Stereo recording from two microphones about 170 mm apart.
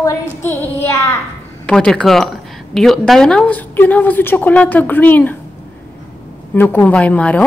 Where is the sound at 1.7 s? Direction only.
5° left (ahead or behind).